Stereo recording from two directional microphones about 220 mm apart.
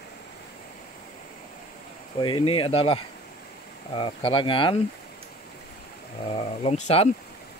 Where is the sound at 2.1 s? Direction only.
20° left (ahead or behind).